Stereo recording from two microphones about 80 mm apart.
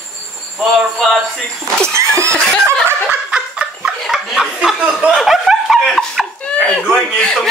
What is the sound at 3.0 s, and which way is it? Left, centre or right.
Snicker, centre.